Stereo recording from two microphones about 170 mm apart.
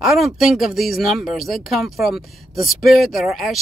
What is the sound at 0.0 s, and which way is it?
Speech, centre (ahead or behind).